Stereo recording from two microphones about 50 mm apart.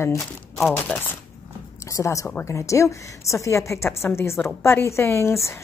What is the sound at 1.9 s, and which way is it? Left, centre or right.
Speech, left.